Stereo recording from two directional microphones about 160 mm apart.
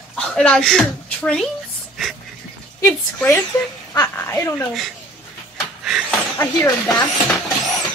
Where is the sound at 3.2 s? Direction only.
10° left (ahead or behind).